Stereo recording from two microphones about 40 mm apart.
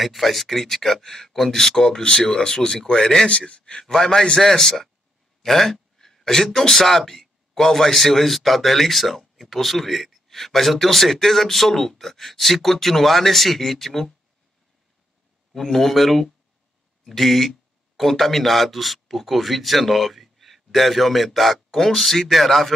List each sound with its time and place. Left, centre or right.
0.0 s speech: centre
3.3 s a man's voice: left
3.8 s speech: centre
5.4 s a sound: centre
6.7 s speech: centre
15.5 s speech: centre